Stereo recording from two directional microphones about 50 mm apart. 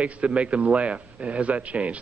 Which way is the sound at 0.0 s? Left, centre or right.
Right.